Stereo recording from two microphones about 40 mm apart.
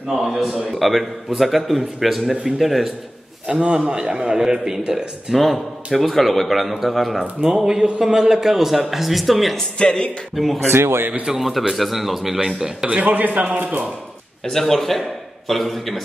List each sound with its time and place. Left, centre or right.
0.1 s a man's voice: centre
3.4 s a man's voice: right; by 7.5 s centre
7.5 s a man's voice: centre
9.8 s speech: left
10.3 s a man's voice: centre
10.7 s speech: right
11.2 s a man's voice: centre
13.0 s a man's voice: right
14.5 s a man's voice: centre